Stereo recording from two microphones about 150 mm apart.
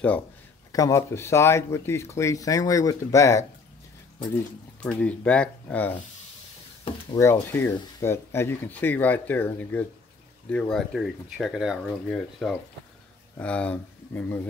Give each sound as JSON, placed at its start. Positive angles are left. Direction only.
{"t": 0.7, "sound": "speech", "side_deg": 20}
{"t": 4.8, "sound": "speech", "side_deg": 10}
{"t": 7.2, "sound": "speech", "side_deg": 15}